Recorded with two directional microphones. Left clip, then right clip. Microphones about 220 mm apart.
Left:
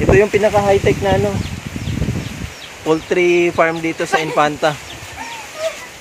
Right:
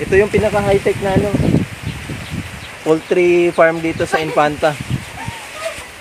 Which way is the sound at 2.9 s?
20° right (ahead or behind).